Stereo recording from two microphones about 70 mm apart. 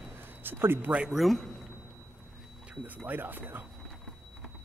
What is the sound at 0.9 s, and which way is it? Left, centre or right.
Speech, centre.